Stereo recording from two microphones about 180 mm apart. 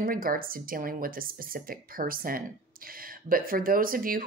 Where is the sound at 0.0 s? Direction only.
50° right (ahead or behind).